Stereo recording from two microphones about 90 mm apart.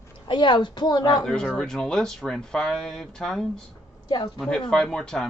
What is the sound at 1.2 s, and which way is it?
Speech, 10° left (ahead or behind).